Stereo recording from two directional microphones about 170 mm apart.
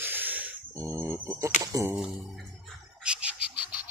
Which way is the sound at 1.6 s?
20° right (ahead or behind).